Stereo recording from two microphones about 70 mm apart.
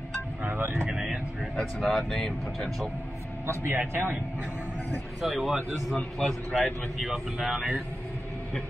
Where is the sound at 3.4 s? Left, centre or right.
Right.